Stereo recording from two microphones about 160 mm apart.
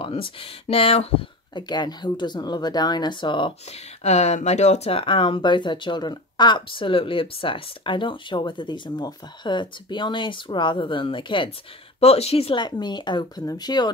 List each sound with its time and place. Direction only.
0.0 s speech: 35° left (ahead or behind)
4.0 s speech: 45° left (ahead or behind); by 13.9 s 25° left (ahead or behind)